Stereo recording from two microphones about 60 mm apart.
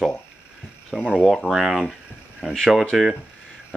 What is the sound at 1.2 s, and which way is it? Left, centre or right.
Speech, centre.